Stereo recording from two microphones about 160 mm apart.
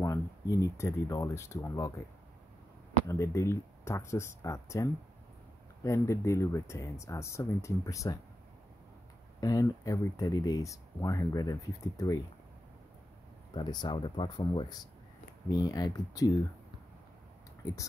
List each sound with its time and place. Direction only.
0.0 s speech: 20° left (ahead or behind)
3.1 s speech: 20° left (ahead or behind)
5.9 s speech: 20° left (ahead or behind)
9.4 s speech: 20° left (ahead or behind)
13.6 s speech: 25° left (ahead or behind)